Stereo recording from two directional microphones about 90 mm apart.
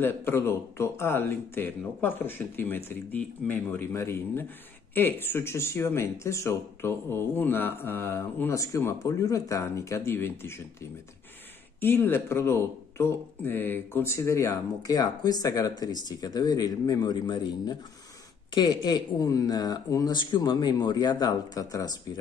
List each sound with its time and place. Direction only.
0.0 s speech: 25° left (ahead or behind)
11.8 s speech: 25° left (ahead or behind); by 20.2 s 45° left (ahead or behind)
20.2 s speech: 55° left (ahead or behind)